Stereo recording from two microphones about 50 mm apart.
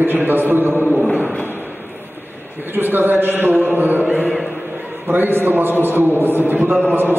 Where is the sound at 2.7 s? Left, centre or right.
Right.